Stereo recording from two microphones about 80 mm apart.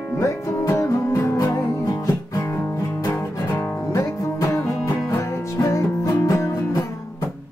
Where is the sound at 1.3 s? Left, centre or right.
Left.